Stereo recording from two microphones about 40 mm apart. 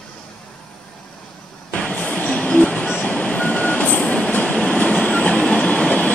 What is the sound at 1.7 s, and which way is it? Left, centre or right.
Train, left.